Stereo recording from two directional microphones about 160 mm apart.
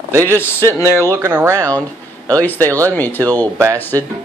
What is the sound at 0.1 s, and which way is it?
Speech, 15° right (ahead or behind).